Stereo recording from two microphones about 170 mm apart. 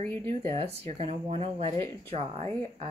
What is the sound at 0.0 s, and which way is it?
Speech, 15° left (ahead or behind).